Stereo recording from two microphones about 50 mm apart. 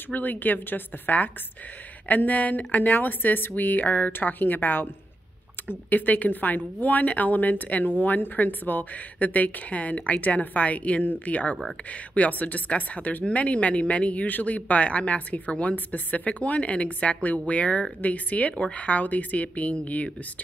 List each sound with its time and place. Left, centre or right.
0.1 s a woman's voice: left
5.9 s a woman's voice: left